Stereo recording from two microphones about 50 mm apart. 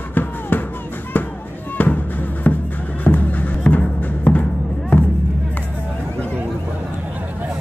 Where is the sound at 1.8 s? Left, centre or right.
Left.